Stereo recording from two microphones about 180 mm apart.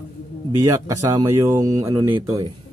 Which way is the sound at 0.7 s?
20° right (ahead or behind).